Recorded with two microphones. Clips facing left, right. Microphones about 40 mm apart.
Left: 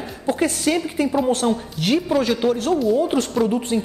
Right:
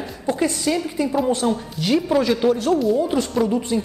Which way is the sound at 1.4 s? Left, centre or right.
Centre.